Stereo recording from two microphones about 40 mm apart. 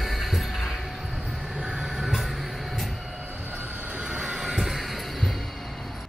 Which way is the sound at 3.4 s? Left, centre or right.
Right.